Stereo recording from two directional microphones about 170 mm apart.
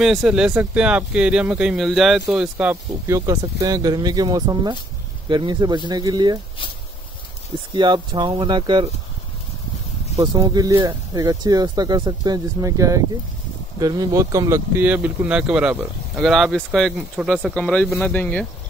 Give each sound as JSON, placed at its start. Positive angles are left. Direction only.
{"t": 0.0, "sound": "speech", "side_deg": 0}
{"t": 7.7, "sound": "speech", "side_deg": -25}
{"t": 10.1, "sound": "speech", "side_deg": -25}